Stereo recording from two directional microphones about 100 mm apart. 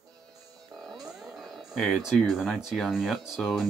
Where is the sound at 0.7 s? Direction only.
Centre (ahead or behind).